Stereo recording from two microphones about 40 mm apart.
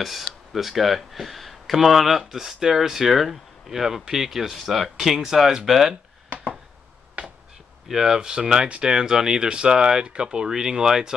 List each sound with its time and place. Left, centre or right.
0.0 s speech: centre
7.9 s speech: centre